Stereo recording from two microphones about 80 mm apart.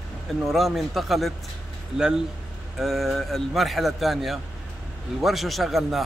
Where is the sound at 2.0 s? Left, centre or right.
Centre.